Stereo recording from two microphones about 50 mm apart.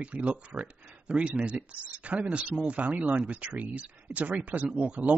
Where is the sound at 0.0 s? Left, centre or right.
Right.